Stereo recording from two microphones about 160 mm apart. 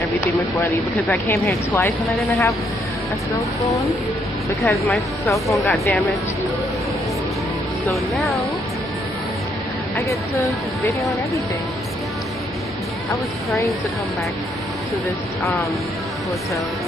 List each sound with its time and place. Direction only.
1.4 s speech: 10° left (ahead or behind)
2.1 s speech: centre (ahead or behind)
4.6 s speech: centre (ahead or behind)
7.9 s speech: centre (ahead or behind)
9.9 s speech: 20° left (ahead or behind)
11.0 s speech: centre (ahead or behind)